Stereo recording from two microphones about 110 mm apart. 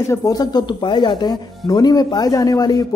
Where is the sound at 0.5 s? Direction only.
45° left (ahead or behind).